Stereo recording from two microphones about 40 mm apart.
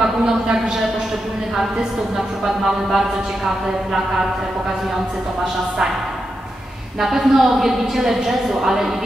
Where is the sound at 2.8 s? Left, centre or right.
Centre.